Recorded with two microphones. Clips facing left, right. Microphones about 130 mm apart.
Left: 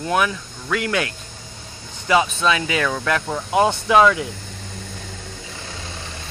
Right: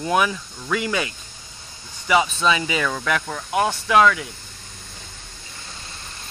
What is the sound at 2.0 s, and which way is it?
Speech, centre (ahead or behind).